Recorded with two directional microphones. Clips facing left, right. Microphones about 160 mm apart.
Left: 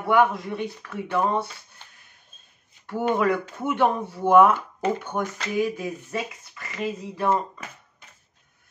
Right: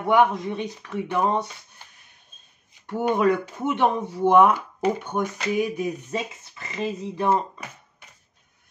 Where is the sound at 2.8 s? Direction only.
20° right (ahead or behind).